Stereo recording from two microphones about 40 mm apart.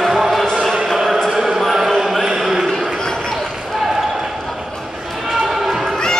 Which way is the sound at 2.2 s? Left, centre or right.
Centre.